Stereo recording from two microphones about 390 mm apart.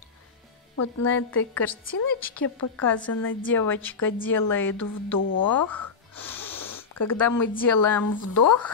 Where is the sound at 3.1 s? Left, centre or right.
Left.